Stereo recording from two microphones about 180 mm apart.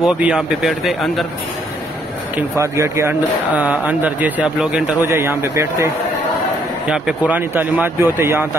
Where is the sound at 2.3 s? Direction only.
15° right (ahead or behind).